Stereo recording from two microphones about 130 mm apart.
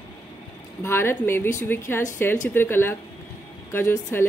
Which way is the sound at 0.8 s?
20° left (ahead or behind).